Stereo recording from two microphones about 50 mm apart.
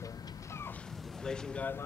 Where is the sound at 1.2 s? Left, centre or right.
Centre.